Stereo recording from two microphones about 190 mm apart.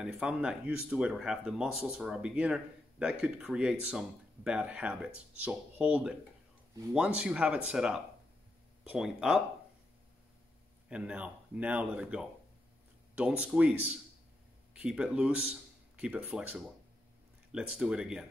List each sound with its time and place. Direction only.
0.0 s speech: 5° right (ahead or behind)
10.9 s speech: 5° right (ahead or behind)
13.4 s speech: 5° right (ahead or behind)